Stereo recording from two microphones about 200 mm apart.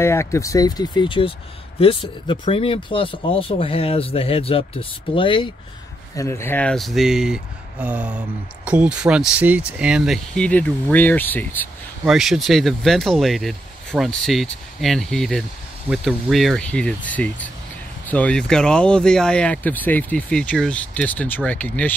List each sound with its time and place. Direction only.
0.0 s speech: 15° left (ahead or behind)
6.1 s speech: 15° left (ahead or behind)
12.0 s speech: centre (ahead or behind)